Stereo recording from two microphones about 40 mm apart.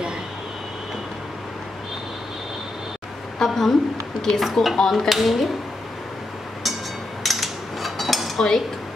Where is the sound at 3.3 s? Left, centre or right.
Centre.